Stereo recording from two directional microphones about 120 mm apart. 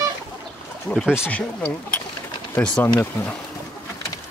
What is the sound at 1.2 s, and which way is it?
Speech, 20° left (ahead or behind).